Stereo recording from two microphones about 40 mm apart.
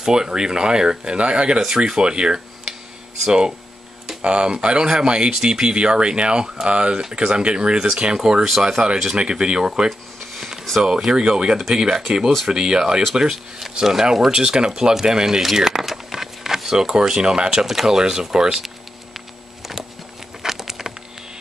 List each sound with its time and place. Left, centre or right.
0.0 s speech: centre
8.5 s speech: centre
9.1 s speech: right
9.8 s a sound: centre
10.8 s speech: centre
20.4 s a sound: centre